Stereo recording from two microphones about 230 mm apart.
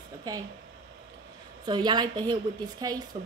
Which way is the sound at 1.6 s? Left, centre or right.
Centre.